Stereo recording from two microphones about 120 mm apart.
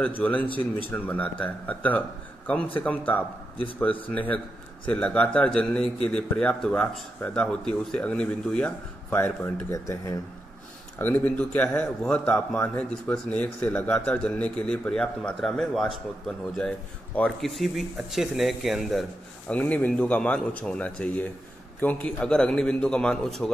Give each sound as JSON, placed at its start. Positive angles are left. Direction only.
{"t": 0.0, "sound": "a man's voice", "side_deg": 15}
{"t": 9.7, "sound": "speech", "side_deg": 25}
{"t": 11.0, "sound": "a man's voice", "side_deg": 15}
{"t": 19.5, "sound": "a man's voice", "side_deg": 15}